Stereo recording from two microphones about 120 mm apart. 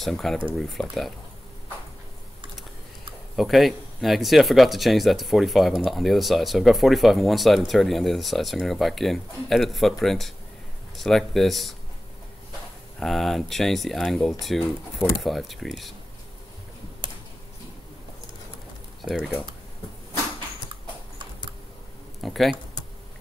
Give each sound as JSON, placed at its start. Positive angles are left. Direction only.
{"t": 0.0, "sound": "speech", "side_deg": 0}
{"t": 3.3, "sound": "speech", "side_deg": 0}
{"t": 13.0, "sound": "speech", "side_deg": 0}
{"t": 17.0, "sound": "tick", "side_deg": -40}
{"t": 22.2, "sound": "speech", "side_deg": 0}